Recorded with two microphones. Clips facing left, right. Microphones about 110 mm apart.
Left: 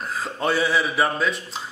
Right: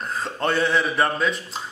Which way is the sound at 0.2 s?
5° left (ahead or behind).